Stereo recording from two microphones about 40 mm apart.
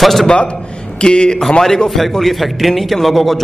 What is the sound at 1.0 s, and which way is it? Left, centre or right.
A man's voice, left.